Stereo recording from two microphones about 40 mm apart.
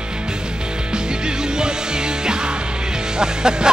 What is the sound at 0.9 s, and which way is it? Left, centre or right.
Music, centre.